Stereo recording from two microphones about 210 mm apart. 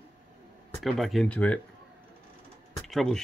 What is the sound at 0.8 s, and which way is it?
Speech, centre (ahead or behind).